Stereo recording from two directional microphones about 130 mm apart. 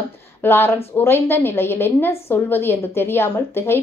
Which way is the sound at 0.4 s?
15° left (ahead or behind).